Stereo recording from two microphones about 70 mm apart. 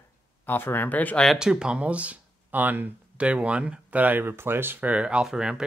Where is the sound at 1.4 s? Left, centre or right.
Centre.